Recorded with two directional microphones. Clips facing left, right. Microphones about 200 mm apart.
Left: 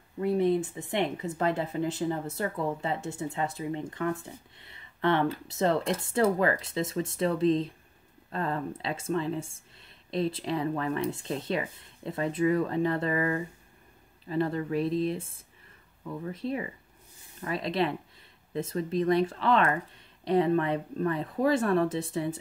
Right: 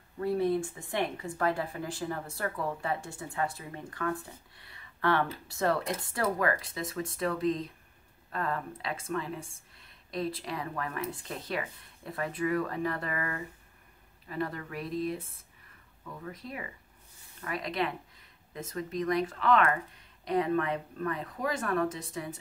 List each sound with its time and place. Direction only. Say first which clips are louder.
0.2 s speech: left 3 dB; 20° left (ahead or behind)